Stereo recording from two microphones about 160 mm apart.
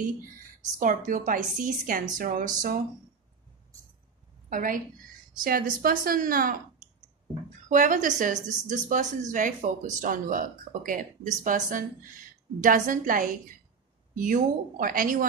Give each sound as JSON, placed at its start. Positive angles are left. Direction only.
{"t": 0.7, "sound": "a woman's voice", "side_deg": -55}
{"t": 4.5, "sound": "a woman's voice", "side_deg": -60}
{"t": 7.6, "sound": "a woman's voice", "side_deg": -55}